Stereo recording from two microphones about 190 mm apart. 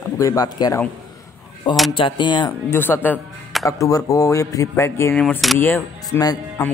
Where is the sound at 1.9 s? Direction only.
25° left (ahead or behind).